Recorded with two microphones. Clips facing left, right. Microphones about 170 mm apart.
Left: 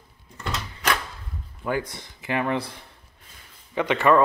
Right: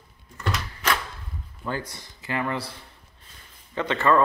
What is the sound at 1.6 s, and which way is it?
A man's voice, 15° left (ahead or behind).